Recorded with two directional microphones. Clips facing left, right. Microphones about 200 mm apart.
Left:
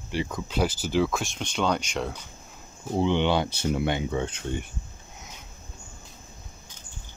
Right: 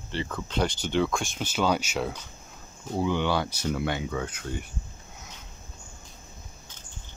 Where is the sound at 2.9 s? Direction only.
25° left (ahead or behind).